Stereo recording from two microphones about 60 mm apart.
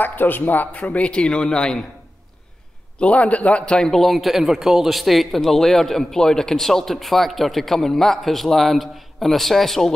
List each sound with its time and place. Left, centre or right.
0.0 s speech: left; by 1.9 s centre
3.0 s a man's voice: left; by 9.9 s centre